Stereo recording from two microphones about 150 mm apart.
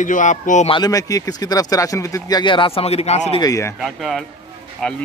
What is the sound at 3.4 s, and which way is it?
Speech, 20° left (ahead or behind).